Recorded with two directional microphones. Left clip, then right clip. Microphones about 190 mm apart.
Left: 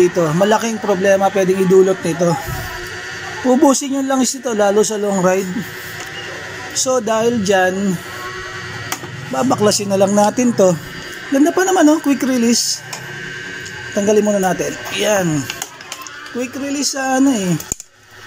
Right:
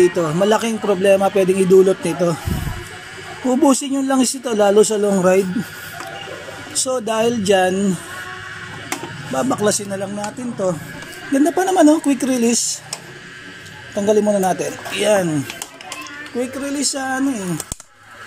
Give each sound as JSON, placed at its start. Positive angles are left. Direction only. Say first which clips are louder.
{"t": 0.0, "sound": "speech", "louder": "left 2 dB", "side_deg": 0}
{"t": 3.4, "sound": "speech", "louder": "left 3 dB", "side_deg": 0}
{"t": 6.7, "sound": "speech", "louder": "left 4 dB", "side_deg": 0}
{"t": 9.3, "sound": "speech", "louder": "left 3 dB", "side_deg": 0}
{"t": 9.8, "sound": "speech", "louder": "left 12 dB", "side_deg": 20}
{"t": 11.3, "sound": "speech", "louder": "left 2 dB", "side_deg": 0}
{"t": 13.9, "sound": "speech", "louder": "left 1 dB", "side_deg": 0}